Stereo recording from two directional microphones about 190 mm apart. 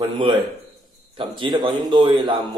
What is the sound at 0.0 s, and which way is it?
Speech, 25° right (ahead or behind).